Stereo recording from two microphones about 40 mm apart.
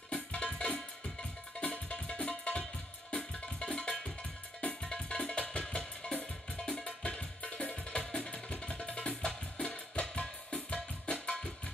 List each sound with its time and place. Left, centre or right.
0.1 s music: left